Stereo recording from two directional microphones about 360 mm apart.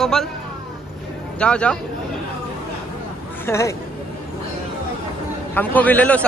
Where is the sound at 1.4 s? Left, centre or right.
Centre.